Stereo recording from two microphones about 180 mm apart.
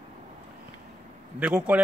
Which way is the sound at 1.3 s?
5° right (ahead or behind).